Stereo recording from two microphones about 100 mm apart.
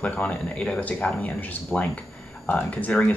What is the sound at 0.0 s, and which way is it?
Speech, 15° left (ahead or behind).